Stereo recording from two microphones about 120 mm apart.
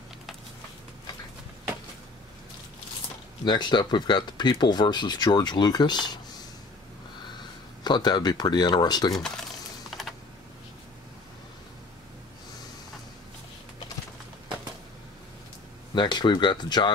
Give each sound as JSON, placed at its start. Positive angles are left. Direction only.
{"t": 3.4, "sound": "speech", "side_deg": 40}
{"t": 7.8, "sound": "speech", "side_deg": 35}
{"t": 9.1, "sound": "typing", "side_deg": 5}
{"t": 15.9, "sound": "speech", "side_deg": 40}